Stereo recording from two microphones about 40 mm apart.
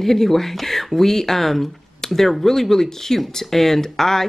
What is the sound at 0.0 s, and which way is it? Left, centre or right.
Speech, centre.